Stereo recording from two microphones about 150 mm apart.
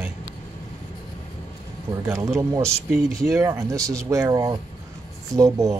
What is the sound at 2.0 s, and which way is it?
Speech, 20° right (ahead or behind).